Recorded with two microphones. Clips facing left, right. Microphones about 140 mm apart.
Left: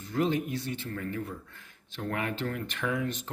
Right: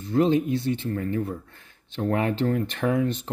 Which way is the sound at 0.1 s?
25° right (ahead or behind).